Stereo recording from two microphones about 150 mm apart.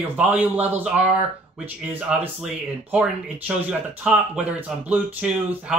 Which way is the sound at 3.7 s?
5° right (ahead or behind).